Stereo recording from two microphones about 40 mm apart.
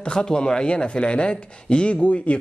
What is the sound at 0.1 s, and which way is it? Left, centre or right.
Speech, left.